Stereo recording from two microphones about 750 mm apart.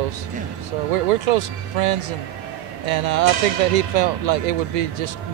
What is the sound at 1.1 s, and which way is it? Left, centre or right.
Speech, right.